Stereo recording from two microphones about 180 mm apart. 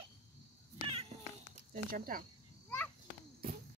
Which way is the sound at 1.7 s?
50° right (ahead or behind).